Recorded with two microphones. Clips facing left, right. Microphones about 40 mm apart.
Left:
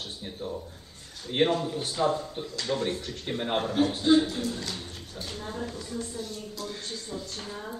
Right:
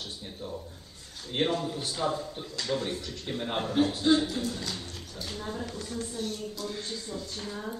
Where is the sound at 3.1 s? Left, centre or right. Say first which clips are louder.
Left 3 dB; centre.